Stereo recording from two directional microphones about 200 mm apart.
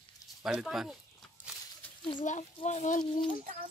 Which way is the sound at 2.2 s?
35° left (ahead or behind).